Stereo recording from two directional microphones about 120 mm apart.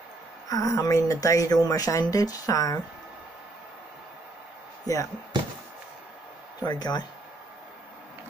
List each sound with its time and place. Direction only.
0.5 s speech: 30° left (ahead or behind)
4.9 s speech: 30° left (ahead or behind)
6.6 s speech: 35° left (ahead or behind)